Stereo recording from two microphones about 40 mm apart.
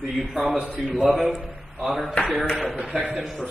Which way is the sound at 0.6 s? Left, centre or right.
Right.